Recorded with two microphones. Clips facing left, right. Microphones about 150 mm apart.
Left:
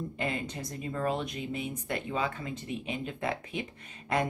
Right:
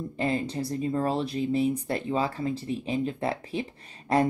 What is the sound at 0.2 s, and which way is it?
Speech, 35° right (ahead or behind).